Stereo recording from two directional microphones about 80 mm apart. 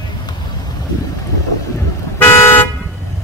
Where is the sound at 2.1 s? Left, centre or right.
Left.